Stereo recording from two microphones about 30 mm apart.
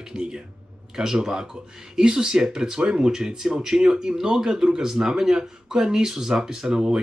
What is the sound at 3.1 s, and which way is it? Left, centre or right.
Speech, right.